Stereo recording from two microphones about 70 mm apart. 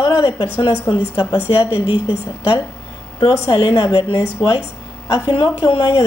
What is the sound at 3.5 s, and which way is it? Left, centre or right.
A woman's voice, left.